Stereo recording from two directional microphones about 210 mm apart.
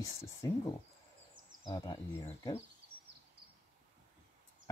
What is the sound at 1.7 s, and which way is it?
Speech, 20° left (ahead or behind).